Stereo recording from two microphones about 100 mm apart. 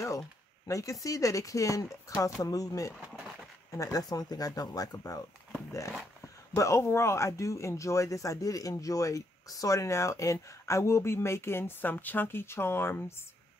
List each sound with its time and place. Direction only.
0.7 s speech: 30° left (ahead or behind)